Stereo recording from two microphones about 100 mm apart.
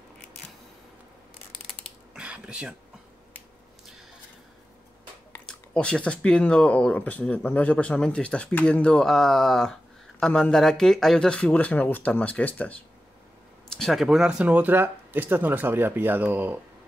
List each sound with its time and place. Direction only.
2.1 s a sound: 10° right (ahead or behind)
5.5 s speech: 10° left (ahead or behind)
13.7 s speech: 5° left (ahead or behind); by 16.5 s 15° right (ahead or behind)